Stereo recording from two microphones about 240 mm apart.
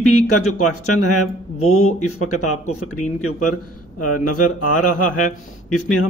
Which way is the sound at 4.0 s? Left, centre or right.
Left.